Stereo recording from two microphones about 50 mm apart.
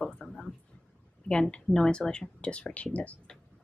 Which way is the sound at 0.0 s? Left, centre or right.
Centre.